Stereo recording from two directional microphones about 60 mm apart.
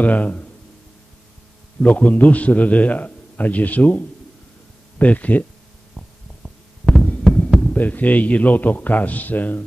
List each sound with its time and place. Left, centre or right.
0.0 s a man's voice: left
1.8 s a man's voice: left
7.3 s heart sounds: centre
7.6 s a man's voice: left